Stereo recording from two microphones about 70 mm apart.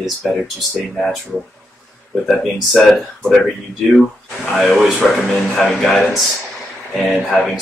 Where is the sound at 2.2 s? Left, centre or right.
Centre.